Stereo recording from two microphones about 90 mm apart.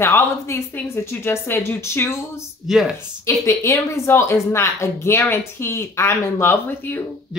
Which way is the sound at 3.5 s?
30° left (ahead or behind).